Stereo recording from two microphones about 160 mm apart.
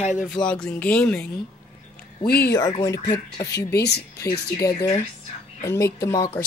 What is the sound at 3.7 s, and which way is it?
Speech, 85° left.